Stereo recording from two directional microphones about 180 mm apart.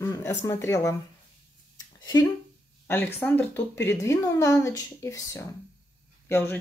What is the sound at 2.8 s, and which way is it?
Speech, 10° left (ahead or behind).